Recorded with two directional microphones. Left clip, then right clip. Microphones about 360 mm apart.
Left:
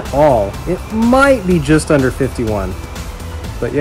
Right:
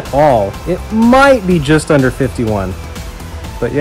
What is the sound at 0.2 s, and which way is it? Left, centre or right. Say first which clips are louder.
Speech: right 1 dB; right.